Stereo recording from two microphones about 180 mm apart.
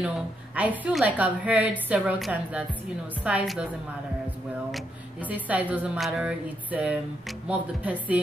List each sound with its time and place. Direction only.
0.6 s a woman's voice: 10° right (ahead or behind)
4.6 s a woman's voice: 5° right (ahead or behind)